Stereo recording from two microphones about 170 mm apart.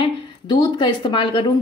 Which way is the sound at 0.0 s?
25° left (ahead or behind).